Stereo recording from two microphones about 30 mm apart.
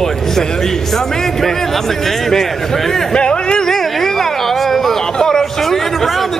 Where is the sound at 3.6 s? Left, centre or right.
Centre.